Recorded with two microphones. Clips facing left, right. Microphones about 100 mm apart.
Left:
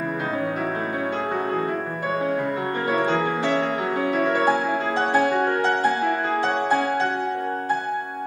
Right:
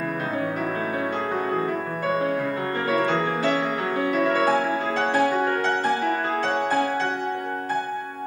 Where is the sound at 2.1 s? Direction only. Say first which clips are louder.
Left 2 dB; 15° left (ahead or behind).